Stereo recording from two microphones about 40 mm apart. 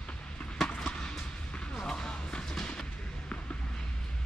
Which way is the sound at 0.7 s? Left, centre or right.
Left.